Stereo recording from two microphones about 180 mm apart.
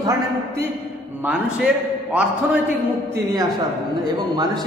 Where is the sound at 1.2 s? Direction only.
5° right (ahead or behind).